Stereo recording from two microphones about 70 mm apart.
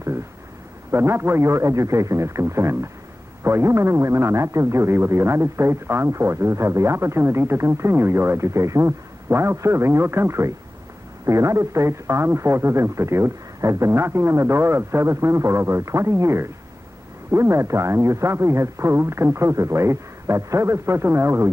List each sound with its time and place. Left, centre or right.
0.9 s a man's voice: right
9.3 s a man's voice: right